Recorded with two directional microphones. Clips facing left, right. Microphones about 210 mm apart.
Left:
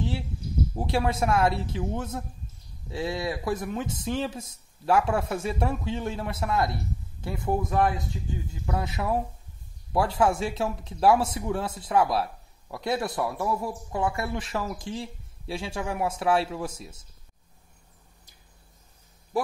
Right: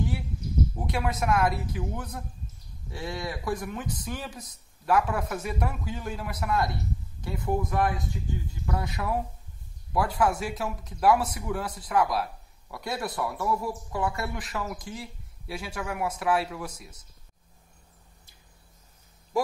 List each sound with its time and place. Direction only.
0.7 s speech: 30° left (ahead or behind)